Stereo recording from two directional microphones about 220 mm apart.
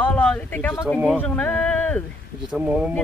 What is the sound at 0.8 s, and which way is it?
Speech, 5° right (ahead or behind).